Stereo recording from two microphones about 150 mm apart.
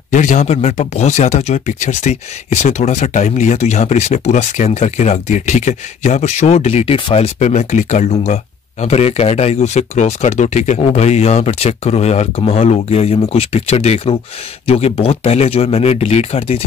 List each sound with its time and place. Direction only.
0.1 s speech: 55° left (ahead or behind)